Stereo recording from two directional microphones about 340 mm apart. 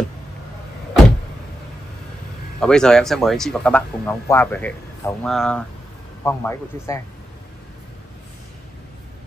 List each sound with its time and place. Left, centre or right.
2.6 s a man's voice: centre